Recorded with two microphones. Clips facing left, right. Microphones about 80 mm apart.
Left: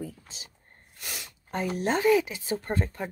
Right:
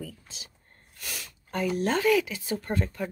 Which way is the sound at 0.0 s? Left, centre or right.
Left.